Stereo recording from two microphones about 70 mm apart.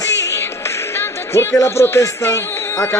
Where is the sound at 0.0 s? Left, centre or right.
Left.